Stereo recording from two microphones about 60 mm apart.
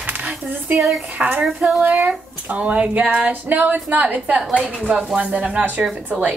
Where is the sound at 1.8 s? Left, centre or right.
Right.